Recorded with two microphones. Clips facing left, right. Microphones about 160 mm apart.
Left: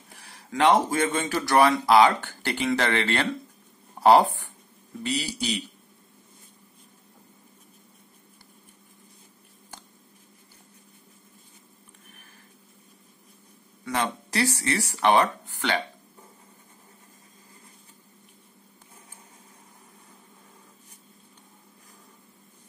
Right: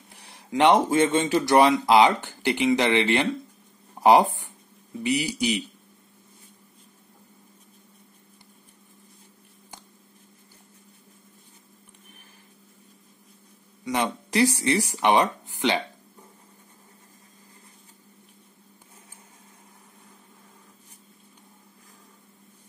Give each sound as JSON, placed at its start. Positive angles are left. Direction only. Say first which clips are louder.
{"t": 0.5, "sound": "speech", "louder": "right 2 dB", "side_deg": -20}
{"t": 13.8, "sound": "speech", "louder": "right 2 dB", "side_deg": -15}